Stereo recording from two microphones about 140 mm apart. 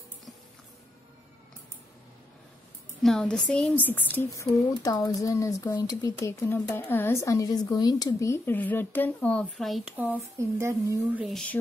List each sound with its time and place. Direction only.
3.0 s a woman's voice: 5° left (ahead or behind)
9.9 s speech: 10° right (ahead or behind)
11.1 s music: centre (ahead or behind)